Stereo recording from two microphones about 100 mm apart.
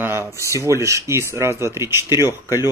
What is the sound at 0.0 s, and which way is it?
Speech, 20° right (ahead or behind).